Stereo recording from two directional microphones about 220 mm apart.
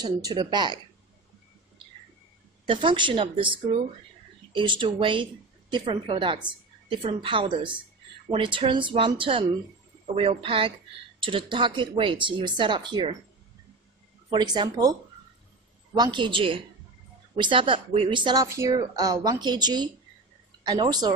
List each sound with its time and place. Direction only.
0.0 s a woman's voice: 20° right (ahead or behind)
2.7 s a woman's voice: 20° right (ahead or behind)
14.3 s a woman's voice: 20° right (ahead or behind)